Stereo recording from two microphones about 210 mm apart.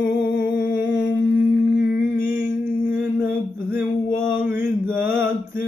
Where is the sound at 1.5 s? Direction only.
60° left (ahead or behind).